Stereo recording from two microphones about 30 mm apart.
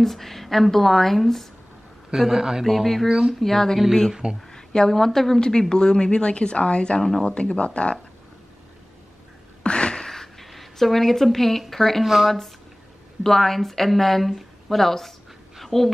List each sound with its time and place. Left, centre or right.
0.0 s a woman's voice: centre
2.1 s speech: centre
3.1 s speech: right
3.3 s a woman's voice: centre
4.5 s a sound: left
4.9 s a woman's voice: centre
5.4 s a woman's voice: left
7.0 s a woman's voice: centre
7.2 s a woman's voice: left
9.6 s a sound: left
10.0 s a sound: centre
10.5 s a woman's voice: centre
12.0 s speech: centre
13.2 s a woman's voice: centre